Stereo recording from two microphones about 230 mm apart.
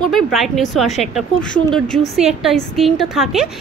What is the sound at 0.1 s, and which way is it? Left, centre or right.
A woman's voice, centre.